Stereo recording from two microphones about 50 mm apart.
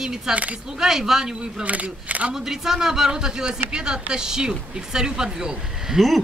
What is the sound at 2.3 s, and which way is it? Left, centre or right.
Speech, centre.